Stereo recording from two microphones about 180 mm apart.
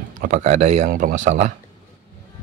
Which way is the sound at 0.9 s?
50° right (ahead or behind).